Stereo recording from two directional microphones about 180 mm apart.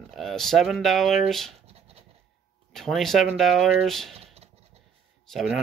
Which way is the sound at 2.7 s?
Centre (ahead or behind).